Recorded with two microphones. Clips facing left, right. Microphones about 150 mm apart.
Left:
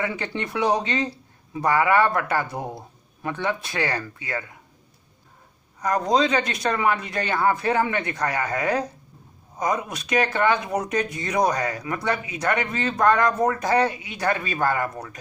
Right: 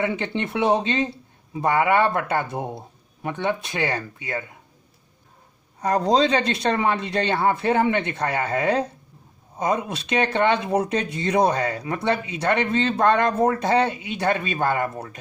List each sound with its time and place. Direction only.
0.0 s speech: 25° right (ahead or behind)
5.8 s speech: 30° right (ahead or behind)